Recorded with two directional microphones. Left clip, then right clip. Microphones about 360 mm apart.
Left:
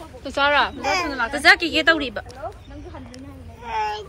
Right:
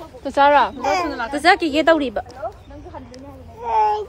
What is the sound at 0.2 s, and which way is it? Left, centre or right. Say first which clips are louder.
A woman's voice: right 5 dB; right.